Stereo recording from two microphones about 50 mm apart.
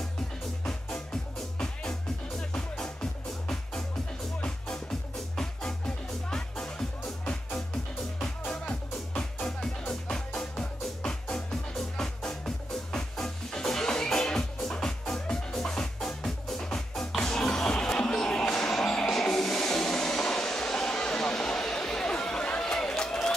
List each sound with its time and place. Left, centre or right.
0.7 s music: centre
5.3 s music: centre
8.2 s music: centre